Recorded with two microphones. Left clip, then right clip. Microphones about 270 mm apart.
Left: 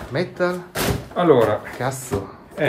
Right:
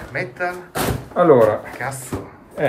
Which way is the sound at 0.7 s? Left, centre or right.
Centre.